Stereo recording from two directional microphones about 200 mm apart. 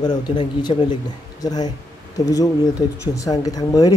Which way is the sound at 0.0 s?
20° left (ahead or behind).